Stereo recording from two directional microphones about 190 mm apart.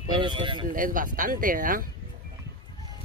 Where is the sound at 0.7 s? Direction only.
45° right (ahead or behind).